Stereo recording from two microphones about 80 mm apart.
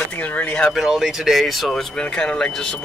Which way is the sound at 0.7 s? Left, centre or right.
Centre.